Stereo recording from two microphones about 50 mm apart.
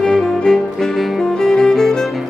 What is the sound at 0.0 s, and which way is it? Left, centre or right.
Music, centre.